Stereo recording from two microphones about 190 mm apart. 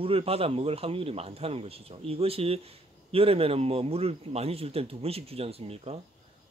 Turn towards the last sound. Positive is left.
turn(degrees=-30)  # may be behind; listen again after turning